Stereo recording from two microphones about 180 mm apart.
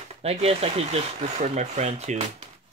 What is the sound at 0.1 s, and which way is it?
Speech, 35° right (ahead or behind).